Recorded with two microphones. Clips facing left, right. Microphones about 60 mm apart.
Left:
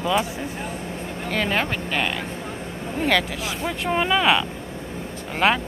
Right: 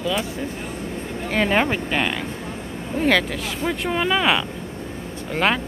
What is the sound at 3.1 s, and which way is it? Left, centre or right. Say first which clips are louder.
Speech: right 2 dB; centre.